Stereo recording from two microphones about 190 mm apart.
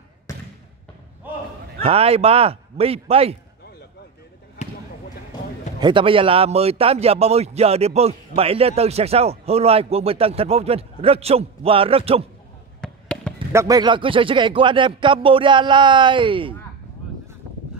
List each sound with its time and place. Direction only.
1.8 s a man's voice: 30° right (ahead or behind)
5.8 s a man's voice: 25° right (ahead or behind)
12.8 s fireworks: 5° left (ahead or behind)
13.5 s speech: 15° right (ahead or behind)